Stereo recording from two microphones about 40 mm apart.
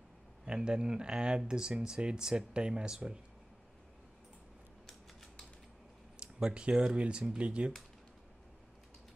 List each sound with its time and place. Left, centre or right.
0.5 s speech: right
6.5 s speech: right